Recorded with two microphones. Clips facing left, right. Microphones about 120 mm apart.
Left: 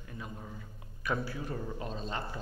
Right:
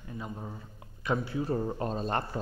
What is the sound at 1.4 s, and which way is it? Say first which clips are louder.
Speech: right 7 dB; 40° right (ahead or behind).